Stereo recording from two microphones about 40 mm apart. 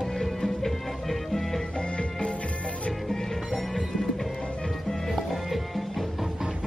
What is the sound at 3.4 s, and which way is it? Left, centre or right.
Music, centre.